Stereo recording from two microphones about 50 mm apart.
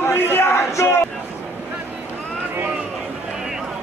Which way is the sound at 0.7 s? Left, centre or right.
Left.